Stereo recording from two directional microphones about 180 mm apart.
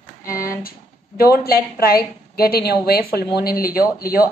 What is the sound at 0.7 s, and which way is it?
A woman's voice, 55° left (ahead or behind).